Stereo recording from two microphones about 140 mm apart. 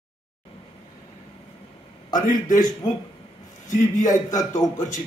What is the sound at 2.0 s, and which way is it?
A man's voice, 70° left (ahead or behind).